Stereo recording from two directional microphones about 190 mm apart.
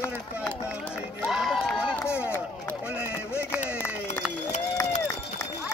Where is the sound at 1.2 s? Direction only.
Centre (ahead or behind).